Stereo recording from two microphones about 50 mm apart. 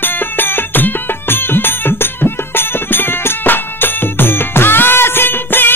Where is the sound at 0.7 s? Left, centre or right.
Left.